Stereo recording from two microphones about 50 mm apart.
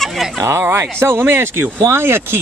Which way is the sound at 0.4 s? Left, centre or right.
Right.